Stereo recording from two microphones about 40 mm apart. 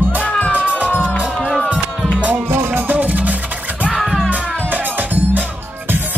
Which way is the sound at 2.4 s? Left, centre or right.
Right.